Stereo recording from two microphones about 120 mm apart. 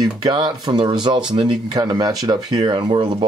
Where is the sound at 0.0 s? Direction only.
35° right (ahead or behind).